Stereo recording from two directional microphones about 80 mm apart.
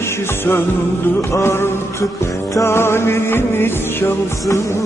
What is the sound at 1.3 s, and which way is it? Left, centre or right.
Music, left.